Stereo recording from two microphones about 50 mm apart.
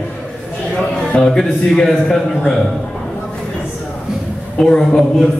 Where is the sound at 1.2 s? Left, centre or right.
Centre.